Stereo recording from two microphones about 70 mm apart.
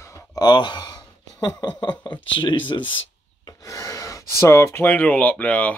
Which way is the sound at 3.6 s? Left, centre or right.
Left.